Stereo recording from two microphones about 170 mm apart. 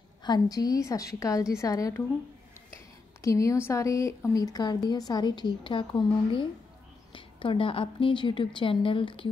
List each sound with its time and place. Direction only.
0.2 s speech: 25° left (ahead or behind)
3.2 s a woman's voice: 20° left (ahead or behind)